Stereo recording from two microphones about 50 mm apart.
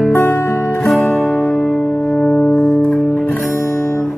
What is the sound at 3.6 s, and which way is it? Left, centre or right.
Music, left.